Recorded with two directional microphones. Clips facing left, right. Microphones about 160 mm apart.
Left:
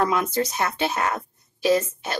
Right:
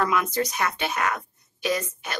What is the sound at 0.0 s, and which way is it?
A woman's voice, 30° left (ahead or behind).